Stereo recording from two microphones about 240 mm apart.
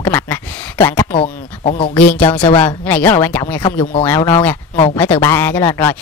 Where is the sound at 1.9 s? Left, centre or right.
Centre.